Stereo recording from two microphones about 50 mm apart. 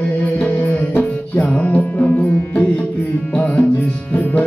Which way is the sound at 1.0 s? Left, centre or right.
Left.